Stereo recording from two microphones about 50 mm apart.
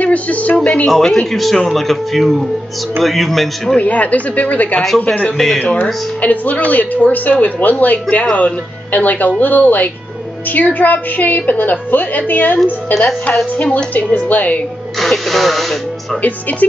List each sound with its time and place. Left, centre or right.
0.0 s speech: left
0.8 s speech: centre
3.7 s a woman's voice: left
15.0 s speech: centre
16.2 s a woman's voice: left